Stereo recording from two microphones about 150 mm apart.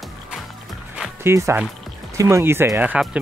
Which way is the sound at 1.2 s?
20° right (ahead or behind).